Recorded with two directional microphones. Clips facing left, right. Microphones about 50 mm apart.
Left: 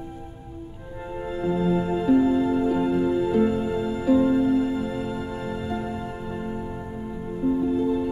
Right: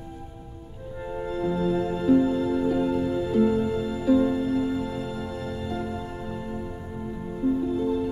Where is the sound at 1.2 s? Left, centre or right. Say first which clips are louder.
Left 2 dB; left.